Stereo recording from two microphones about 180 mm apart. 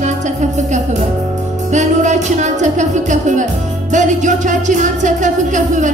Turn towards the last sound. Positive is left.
turn(degrees=-45)  # may be behind; listen again after turning